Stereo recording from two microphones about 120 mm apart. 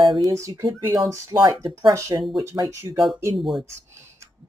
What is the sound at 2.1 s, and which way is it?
Speech, 40° right (ahead or behind).